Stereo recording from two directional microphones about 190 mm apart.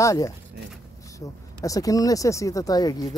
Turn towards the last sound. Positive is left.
turn(degrees=20)  # may be behind; listen again after turning